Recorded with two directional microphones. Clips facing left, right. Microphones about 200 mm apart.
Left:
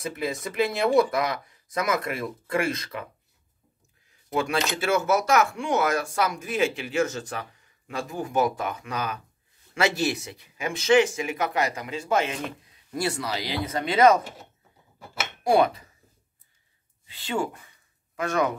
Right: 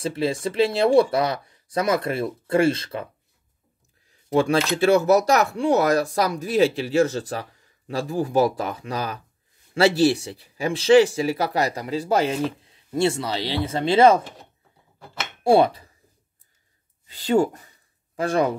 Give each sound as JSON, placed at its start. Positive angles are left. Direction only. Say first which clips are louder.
{"t": 0.0, "sound": "speech", "louder": "right 6 dB", "side_deg": -30}
{"t": 4.3, "sound": "speech", "louder": "right 6 dB", "side_deg": -35}
{"t": 15.4, "sound": "speech", "louder": "right 4 dB", "side_deg": -30}
{"t": 17.0, "sound": "a sound", "louder": "right 9 dB", "side_deg": -40}